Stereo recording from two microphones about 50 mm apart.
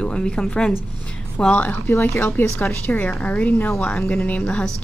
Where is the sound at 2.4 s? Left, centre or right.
Left.